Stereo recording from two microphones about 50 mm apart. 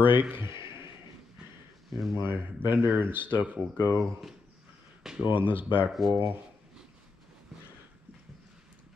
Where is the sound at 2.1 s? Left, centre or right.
Right.